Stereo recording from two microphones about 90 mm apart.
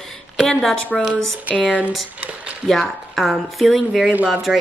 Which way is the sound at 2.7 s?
Centre (ahead or behind).